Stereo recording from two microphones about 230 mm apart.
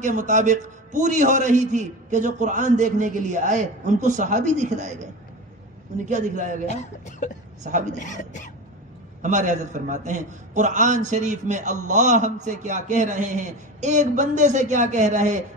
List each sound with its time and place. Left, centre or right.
0.0 s a man's voice: right
6.0 s a man's voice: right
6.7 s speech: left
9.2 s a man's voice: right